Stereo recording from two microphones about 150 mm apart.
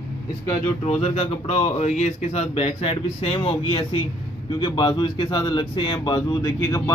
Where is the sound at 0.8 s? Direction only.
40° left (ahead or behind).